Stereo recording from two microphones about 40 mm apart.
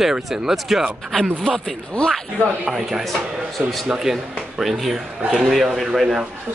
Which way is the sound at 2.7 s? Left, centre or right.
Centre.